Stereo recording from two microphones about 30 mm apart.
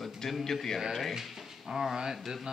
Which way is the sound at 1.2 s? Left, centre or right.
Centre.